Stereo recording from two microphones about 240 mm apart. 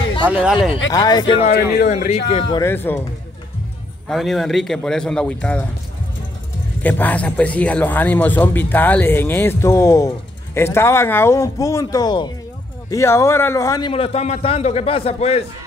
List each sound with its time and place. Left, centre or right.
0.3 s speech: centre
0.9 s a man's voice: centre
1.5 s a man's voice: left
2.0 s a man's voice: left
2.5 s a man's voice: centre
4.1 s speech: centre
6.8 s a man's voice: centre; by 15.4 s left